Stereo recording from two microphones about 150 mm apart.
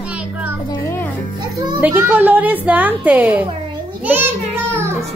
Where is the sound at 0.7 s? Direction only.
20° left (ahead or behind).